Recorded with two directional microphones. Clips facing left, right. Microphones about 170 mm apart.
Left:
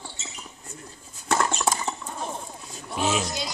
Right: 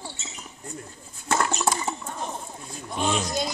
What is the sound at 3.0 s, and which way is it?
Speech, 5° left (ahead or behind).